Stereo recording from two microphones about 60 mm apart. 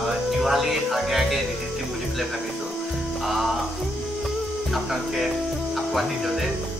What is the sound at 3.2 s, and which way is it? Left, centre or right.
Music, centre.